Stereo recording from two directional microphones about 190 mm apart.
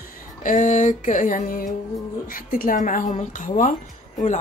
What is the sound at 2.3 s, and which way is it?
A woman's voice, 50° left (ahead or behind).